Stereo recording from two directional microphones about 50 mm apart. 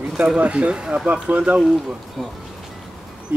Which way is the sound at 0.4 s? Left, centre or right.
Right.